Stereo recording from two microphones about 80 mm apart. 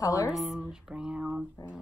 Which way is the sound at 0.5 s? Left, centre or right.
Centre.